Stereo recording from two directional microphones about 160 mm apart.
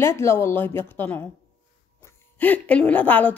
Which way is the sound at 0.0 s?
15° left (ahead or behind).